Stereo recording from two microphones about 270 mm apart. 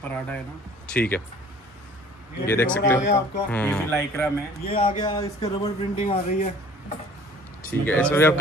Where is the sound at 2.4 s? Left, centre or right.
Centre.